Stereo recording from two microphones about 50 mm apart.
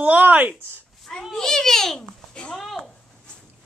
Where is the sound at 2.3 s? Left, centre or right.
Centre.